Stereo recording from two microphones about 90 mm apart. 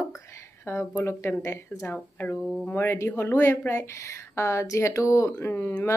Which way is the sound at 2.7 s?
25° left (ahead or behind).